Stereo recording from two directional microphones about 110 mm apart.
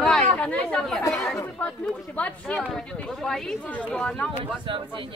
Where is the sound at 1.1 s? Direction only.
5° left (ahead or behind).